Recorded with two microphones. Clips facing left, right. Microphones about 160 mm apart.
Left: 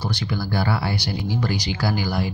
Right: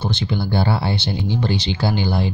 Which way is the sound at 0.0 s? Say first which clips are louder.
Right 3 dB; 25° right (ahead or behind).